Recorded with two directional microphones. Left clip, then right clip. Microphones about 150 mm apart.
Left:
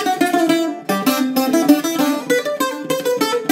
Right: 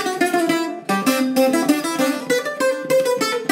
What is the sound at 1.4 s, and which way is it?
Music, 35° left (ahead or behind).